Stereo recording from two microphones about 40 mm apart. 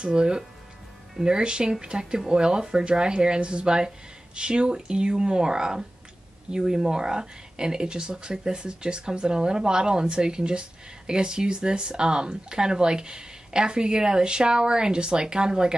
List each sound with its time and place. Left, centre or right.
0.0 s speech: centre